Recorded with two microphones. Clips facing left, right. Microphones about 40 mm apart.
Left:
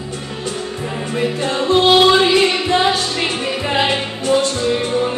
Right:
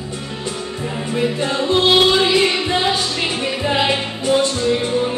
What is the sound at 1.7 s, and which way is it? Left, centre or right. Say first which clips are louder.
Music: left 3 dB; centre.